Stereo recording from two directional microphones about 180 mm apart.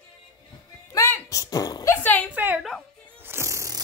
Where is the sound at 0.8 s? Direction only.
15° left (ahead or behind).